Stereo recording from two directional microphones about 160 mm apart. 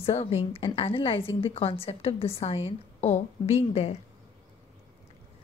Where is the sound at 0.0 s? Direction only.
40° left (ahead or behind).